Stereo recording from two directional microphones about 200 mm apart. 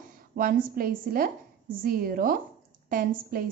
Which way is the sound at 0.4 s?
45° right (ahead or behind).